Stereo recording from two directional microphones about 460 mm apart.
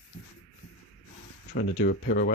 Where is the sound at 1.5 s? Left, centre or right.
Left.